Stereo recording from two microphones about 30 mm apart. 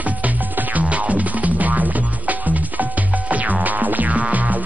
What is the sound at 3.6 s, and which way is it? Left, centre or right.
Music, right.